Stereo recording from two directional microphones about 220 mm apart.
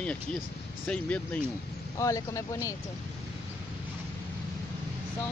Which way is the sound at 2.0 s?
15° left (ahead or behind).